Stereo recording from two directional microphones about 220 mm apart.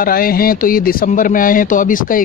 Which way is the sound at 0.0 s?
40° left (ahead or behind).